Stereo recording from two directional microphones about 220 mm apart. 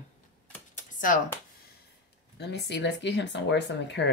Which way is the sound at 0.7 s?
35° left (ahead or behind).